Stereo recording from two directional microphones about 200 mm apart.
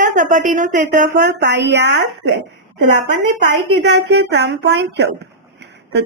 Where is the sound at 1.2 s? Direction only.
60° right (ahead or behind).